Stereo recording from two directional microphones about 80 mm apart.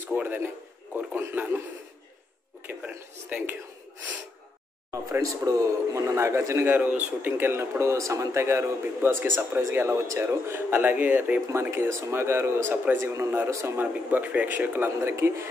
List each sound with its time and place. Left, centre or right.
0.0 s a sound: right
2.8 s a sound: centre
5.4 s a man's voice: right; by 11.4 s centre
11.5 s a man's voice: right
13.7 s speech: right
15.0 s a man's voice: right